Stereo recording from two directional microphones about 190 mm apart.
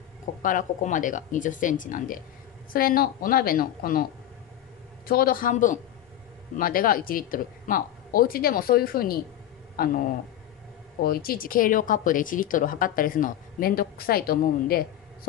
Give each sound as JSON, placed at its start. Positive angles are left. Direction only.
{"t": 0.4, "sound": "speech", "side_deg": 45}
{"t": 11.0, "sound": "speech", "side_deg": 50}